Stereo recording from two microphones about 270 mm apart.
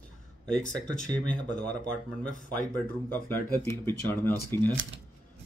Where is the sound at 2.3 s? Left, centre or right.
Left.